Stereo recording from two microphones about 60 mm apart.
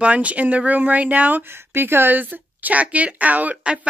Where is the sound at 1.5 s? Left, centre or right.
Right.